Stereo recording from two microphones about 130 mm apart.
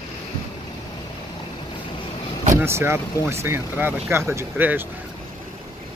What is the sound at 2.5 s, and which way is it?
Speech, 20° right (ahead or behind).